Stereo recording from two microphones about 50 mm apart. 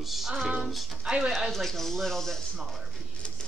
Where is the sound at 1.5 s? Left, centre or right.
Centre.